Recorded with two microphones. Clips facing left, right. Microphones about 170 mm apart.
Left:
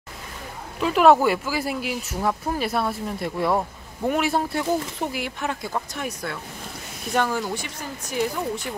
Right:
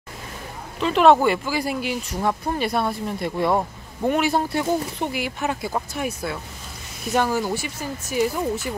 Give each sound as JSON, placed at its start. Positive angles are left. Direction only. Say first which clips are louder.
{"t": 0.7, "sound": "speech", "louder": "right 1 dB", "side_deg": 5}